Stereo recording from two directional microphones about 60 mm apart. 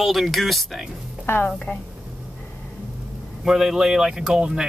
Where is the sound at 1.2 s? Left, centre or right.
Left.